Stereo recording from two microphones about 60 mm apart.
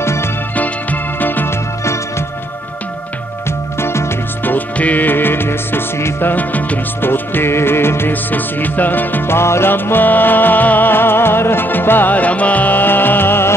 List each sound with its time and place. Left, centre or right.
1.2 s music: left
4.5 s music: left
6.3 s music: left
8.1 s music: left
9.4 s music: left